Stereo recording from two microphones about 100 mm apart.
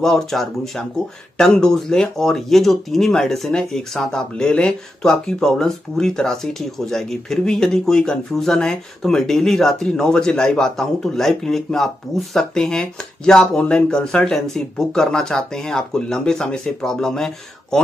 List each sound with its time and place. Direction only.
0.0 s speech: 5° left (ahead or behind)